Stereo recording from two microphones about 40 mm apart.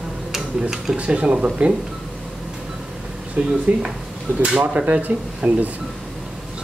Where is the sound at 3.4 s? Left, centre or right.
Right.